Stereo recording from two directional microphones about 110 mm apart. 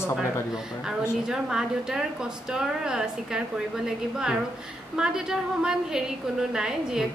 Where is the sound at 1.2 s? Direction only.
5° right (ahead or behind).